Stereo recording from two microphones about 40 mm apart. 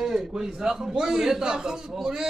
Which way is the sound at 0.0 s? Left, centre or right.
Centre.